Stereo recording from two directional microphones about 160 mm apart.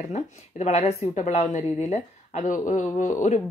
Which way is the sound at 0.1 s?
45° left (ahead or behind).